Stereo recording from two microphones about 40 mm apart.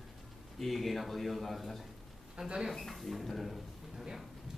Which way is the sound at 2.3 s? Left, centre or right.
Centre.